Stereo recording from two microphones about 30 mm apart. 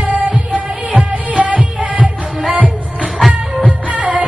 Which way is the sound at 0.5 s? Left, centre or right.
Right.